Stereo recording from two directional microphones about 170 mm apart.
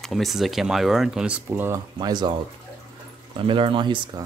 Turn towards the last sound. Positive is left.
turn(degrees=-30)  # may be behind; listen again after turning